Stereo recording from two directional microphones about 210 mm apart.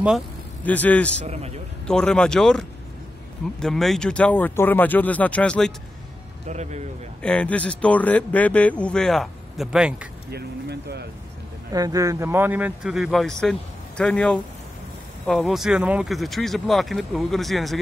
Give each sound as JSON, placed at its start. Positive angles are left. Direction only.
{"t": 0.7, "sound": "speech", "side_deg": 5}
{"t": 1.2, "sound": "speech", "side_deg": -30}
{"t": 1.9, "sound": "speech", "side_deg": 5}
{"t": 6.4, "sound": "speech", "side_deg": -35}
{"t": 7.2, "sound": "speech", "side_deg": 5}
{"t": 10.3, "sound": "speech", "side_deg": -50}
{"t": 11.7, "sound": "speech", "side_deg": -15}